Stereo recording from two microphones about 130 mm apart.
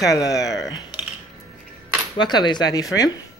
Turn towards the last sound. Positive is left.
turn(degrees=30)  # may be behind; listen again after turning